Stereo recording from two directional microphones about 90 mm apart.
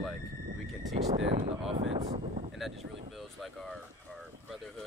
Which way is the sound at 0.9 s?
90° right.